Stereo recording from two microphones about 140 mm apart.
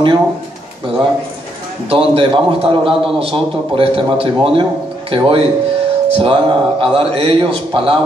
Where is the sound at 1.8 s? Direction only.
40° right (ahead or behind).